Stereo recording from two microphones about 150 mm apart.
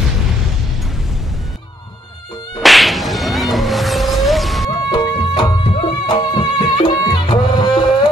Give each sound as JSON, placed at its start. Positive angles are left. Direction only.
{"t": 2.6, "sound": "whip", "side_deg": 0}
{"t": 4.9, "sound": "music", "side_deg": 30}